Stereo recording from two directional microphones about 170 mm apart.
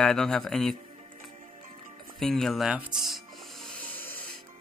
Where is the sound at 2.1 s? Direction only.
Centre (ahead or behind).